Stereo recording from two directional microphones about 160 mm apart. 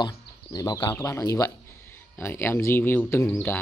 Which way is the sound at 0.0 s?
25° left (ahead or behind).